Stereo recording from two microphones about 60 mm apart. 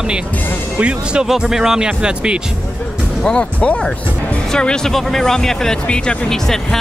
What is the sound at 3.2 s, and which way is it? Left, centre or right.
Speech, centre.